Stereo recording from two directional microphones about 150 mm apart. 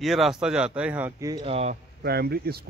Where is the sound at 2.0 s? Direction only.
90° right.